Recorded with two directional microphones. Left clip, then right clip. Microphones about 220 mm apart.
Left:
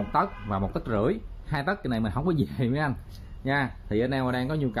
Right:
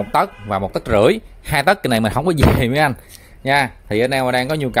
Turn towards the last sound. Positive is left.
turn(degrees=-35)  # may be behind; listen again after turning